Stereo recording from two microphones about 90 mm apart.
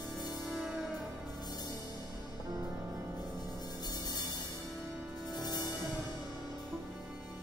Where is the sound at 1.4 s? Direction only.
50° left (ahead or behind).